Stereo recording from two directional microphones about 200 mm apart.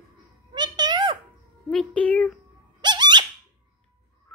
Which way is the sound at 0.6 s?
20° right (ahead or behind).